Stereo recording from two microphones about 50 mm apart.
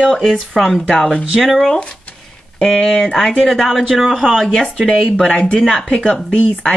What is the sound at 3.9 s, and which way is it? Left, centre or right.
Speech, centre.